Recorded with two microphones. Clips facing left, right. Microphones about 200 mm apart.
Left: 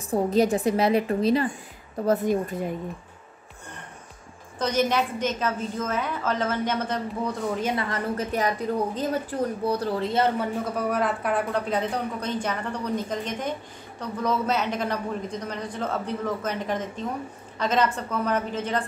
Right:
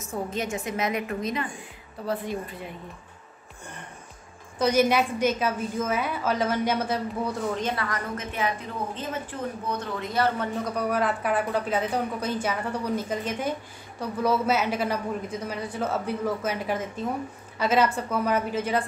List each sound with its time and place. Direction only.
0.0 s a woman's voice: 35° left (ahead or behind)
2.0 s speech: 45° left (ahead or behind)
4.6 s speech: 10° right (ahead or behind)
7.7 s a woman's voice: 25° left (ahead or behind)
8.2 s a woman's voice: 40° left (ahead or behind)
10.4 s speech: centre (ahead or behind)